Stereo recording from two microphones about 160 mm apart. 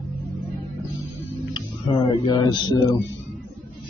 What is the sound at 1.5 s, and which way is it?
Music, 30° left (ahead or behind).